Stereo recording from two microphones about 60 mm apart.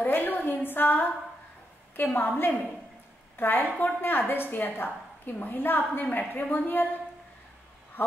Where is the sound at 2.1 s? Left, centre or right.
Left.